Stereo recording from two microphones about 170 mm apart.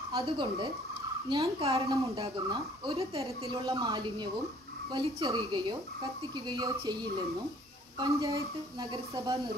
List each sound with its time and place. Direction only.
0.1 s a woman's voice: 30° right (ahead or behind)
2.5 s speech: 20° right (ahead or behind)
3.0 s a woman's voice: 35° right (ahead or behind)
3.6 s speech: 20° right (ahead or behind)
8.0 s speech: 20° right (ahead or behind)